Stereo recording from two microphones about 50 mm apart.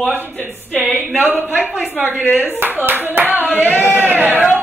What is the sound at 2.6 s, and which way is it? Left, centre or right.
Speech, right.